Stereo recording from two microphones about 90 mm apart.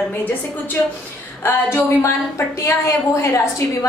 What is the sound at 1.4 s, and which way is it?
A woman's voice, 25° left (ahead or behind).